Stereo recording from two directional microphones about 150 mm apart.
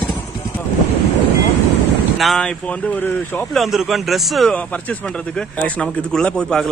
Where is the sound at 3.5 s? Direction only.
Centre (ahead or behind).